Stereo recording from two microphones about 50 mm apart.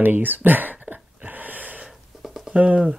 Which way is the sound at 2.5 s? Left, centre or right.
Right.